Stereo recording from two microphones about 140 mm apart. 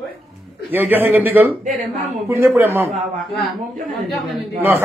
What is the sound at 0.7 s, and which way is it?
Speech, 15° right (ahead or behind).